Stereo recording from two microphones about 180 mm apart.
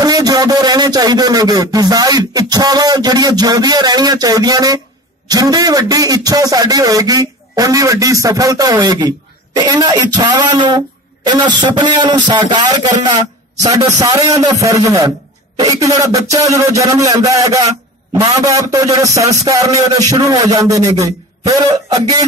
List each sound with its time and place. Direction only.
0.0 s speech: 20° right (ahead or behind)